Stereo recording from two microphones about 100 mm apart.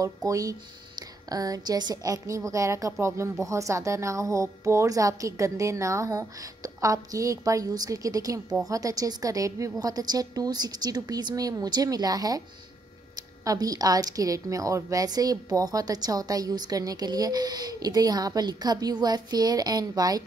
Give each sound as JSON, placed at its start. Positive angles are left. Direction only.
{"t": 0.0, "sound": "speech", "side_deg": -35}